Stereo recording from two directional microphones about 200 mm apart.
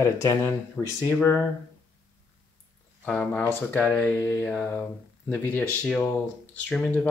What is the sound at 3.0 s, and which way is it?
Speech, 5° left (ahead or behind).